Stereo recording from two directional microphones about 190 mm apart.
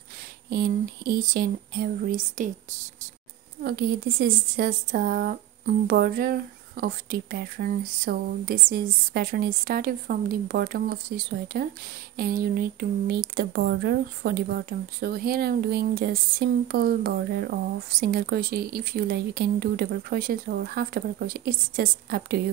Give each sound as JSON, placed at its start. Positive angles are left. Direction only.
{"t": 0.5, "sound": "speech", "side_deg": -50}
{"t": 4.2, "sound": "speech", "side_deg": -50}